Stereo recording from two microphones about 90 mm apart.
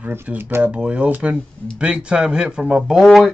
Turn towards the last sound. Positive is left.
turn(degrees=0)  # may be behind; listen again after turning